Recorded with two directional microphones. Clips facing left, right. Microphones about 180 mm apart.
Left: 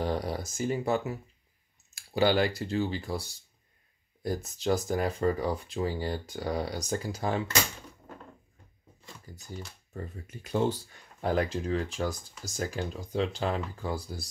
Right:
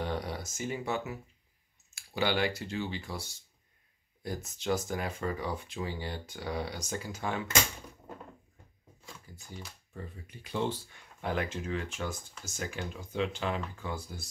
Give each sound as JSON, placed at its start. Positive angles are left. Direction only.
{"t": 0.0, "sound": "speech", "side_deg": 35}
{"t": 2.1, "sound": "speech", "side_deg": 40}
{"t": 9.3, "sound": "a sound", "side_deg": 40}
{"t": 9.9, "sound": "speech", "side_deg": 45}